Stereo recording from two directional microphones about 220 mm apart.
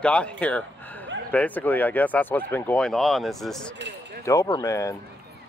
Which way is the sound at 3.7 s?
55° right (ahead or behind).